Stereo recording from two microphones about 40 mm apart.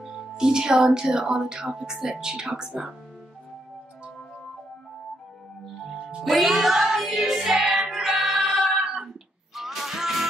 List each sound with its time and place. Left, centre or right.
0.0 s speech: centre
6.2 s music: centre